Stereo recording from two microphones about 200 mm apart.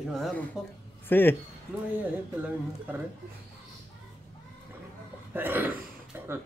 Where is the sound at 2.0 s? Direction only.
10° right (ahead or behind).